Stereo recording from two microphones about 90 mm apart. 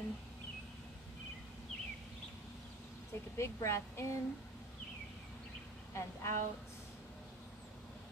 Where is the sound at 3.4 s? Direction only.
30° left (ahead or behind).